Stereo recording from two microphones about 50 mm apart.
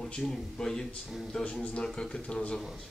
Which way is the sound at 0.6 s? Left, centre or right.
Centre.